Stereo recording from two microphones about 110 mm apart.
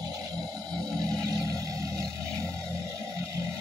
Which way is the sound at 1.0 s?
35° right (ahead or behind).